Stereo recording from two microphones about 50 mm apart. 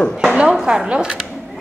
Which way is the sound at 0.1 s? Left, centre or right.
Centre.